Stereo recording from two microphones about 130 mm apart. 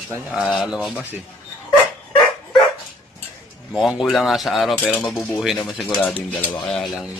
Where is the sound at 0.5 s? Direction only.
5° right (ahead or behind).